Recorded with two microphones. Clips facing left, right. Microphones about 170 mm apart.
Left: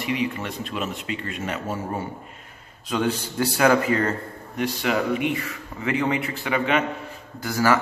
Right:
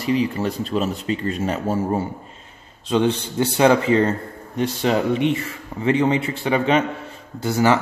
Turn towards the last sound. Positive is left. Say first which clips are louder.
# right 3 dB
turn(degrees=-20)  # may be behind; listen again after turning